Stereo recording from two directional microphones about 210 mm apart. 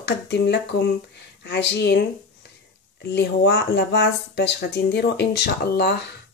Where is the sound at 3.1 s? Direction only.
50° left (ahead or behind).